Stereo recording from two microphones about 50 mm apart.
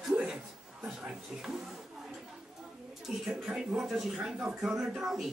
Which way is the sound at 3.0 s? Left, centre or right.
Centre.